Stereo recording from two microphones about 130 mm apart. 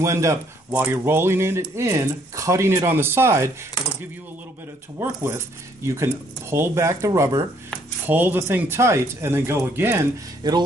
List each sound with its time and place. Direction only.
0.0 s speech: 25° right (ahead or behind)
5.0 s speech: 20° right (ahead or behind)
8.1 s speech: 15° right (ahead or behind)
10.4 s speech: 30° right (ahead or behind)